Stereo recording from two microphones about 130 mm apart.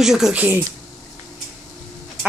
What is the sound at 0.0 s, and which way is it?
Speech, 5° right (ahead or behind).